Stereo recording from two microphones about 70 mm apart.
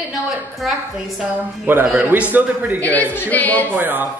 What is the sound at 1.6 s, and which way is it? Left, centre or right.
Speech, right.